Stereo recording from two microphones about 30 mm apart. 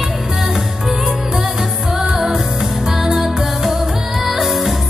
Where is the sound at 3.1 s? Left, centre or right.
Centre.